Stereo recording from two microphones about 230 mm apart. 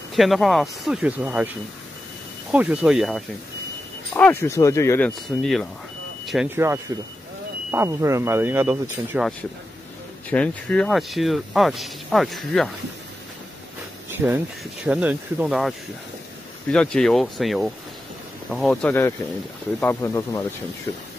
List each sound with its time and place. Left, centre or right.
0.1 s speech: centre
4.1 s speech: centre
10.3 s speech: centre
14.1 s speech: centre
16.7 s speech: centre